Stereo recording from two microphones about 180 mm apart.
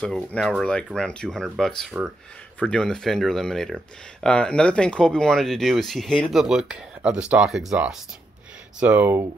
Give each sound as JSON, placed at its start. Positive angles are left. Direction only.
{"t": 0.0, "sound": "speech", "side_deg": 5}